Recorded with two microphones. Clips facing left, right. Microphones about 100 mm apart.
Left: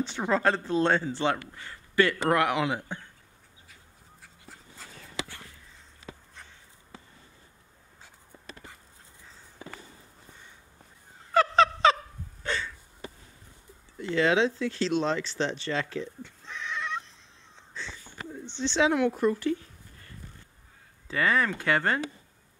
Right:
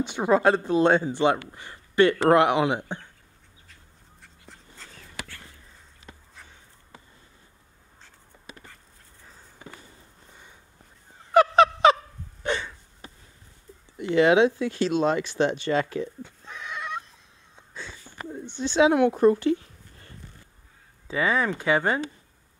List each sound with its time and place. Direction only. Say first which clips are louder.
0.0 s speech: right 5 dB; 15° right (ahead or behind)
4.2 s dog: right 1 dB; 5° left (ahead or behind)
11.3 s a sound: right 4 dB; 15° right (ahead or behind)
13.9 s speech: right 6 dB; 15° right (ahead or behind)
16.3 s neigh: even; 10° right (ahead or behind)
18.6 s speech: right 5 dB; 10° right (ahead or behind)
18.9 s speech: right 6 dB; 25° right (ahead or behind)
21.1 s speech: right 2 dB; 5° right (ahead or behind)